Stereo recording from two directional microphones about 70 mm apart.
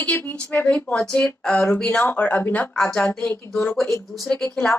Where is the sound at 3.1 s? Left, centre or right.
Left.